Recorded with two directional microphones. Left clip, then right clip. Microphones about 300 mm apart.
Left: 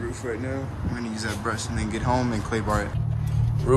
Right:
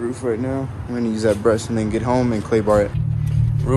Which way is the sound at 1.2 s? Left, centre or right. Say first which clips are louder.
Right 13 dB; centre.